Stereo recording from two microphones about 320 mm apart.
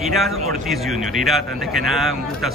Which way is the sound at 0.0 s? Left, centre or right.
Centre.